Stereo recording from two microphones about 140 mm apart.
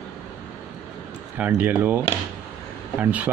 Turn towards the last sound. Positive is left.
turn(degrees=-10)  # may be behind; listen again after turning